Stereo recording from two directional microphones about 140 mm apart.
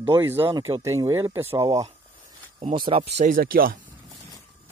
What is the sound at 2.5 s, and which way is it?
Speech, 40° right (ahead or behind).